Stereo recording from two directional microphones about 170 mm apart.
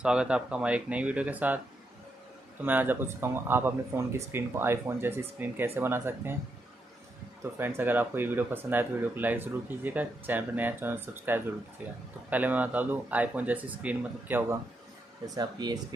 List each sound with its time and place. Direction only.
0.0 s speech: 5° right (ahead or behind)
2.6 s speech: 10° right (ahead or behind)
7.5 s speech: 15° right (ahead or behind)
15.2 s speech: 25° right (ahead or behind)